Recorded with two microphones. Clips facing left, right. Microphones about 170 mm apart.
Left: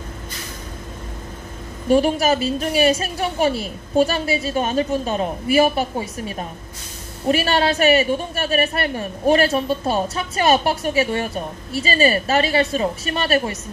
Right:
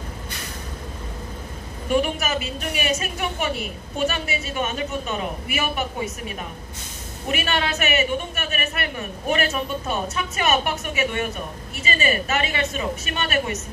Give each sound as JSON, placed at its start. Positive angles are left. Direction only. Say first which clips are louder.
{"t": 1.9, "sound": "a woman's voice", "louder": "left 6 dB", "side_deg": 35}